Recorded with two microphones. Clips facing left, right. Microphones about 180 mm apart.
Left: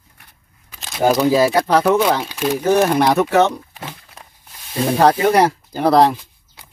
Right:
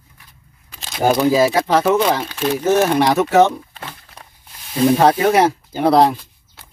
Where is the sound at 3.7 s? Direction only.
5° left (ahead or behind).